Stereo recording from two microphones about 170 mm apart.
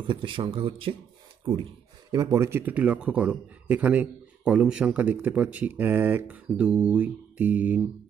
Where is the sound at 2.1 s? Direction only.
15° right (ahead or behind).